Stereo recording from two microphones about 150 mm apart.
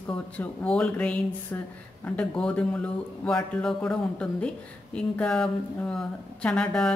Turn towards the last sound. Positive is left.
turn(degrees=5)  # may be behind; listen again after turning